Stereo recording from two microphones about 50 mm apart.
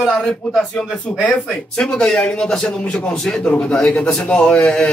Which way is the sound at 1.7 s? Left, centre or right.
Centre.